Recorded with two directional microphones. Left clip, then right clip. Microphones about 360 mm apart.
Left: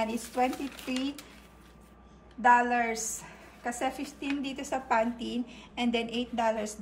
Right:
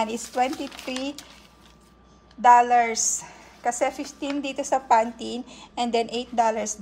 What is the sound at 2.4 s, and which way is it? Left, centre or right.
A woman's voice, centre.